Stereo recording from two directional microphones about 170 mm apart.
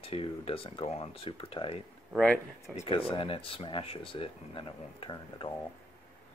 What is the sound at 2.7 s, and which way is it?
Speech, 35° left (ahead or behind).